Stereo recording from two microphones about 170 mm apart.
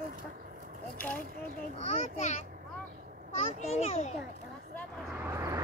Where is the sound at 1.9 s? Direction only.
40° left (ahead or behind).